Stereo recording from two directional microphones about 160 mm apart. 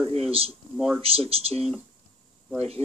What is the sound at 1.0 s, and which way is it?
Speech, 35° right (ahead or behind).